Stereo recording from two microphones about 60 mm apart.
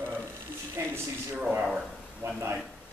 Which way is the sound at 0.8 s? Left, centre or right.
Right.